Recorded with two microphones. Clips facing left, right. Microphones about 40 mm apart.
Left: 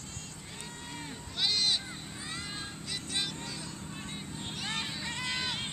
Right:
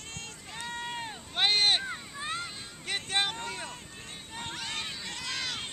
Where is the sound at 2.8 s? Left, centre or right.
Right.